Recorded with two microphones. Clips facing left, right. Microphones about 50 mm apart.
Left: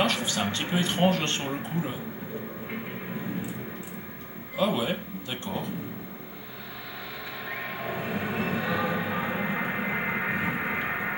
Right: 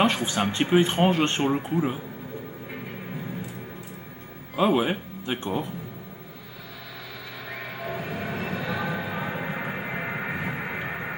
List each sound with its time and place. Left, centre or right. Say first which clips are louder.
0.0 s speech: right 3 dB; right
4.6 s speech: right 4 dB; right
7.4 s a sound: even; centre